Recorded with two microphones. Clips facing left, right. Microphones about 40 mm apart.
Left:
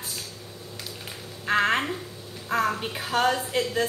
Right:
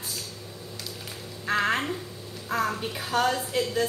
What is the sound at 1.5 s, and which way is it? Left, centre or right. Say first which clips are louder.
A woman's voice: left 2 dB; centre.